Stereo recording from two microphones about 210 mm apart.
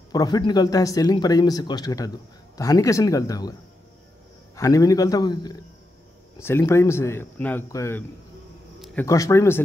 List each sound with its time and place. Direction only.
0.1 s speech: 20° left (ahead or behind)
4.6 s speech: 15° left (ahead or behind)
9.0 s speech: 15° left (ahead or behind)